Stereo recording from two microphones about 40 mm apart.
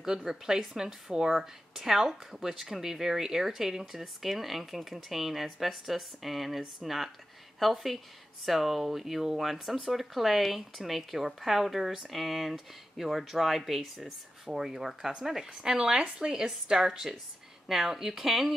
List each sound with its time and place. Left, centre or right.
0.0 s a woman's voice: centre